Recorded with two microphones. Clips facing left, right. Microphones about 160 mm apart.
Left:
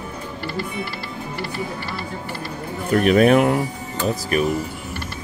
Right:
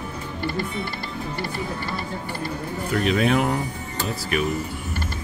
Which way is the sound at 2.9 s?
55° left (ahead or behind).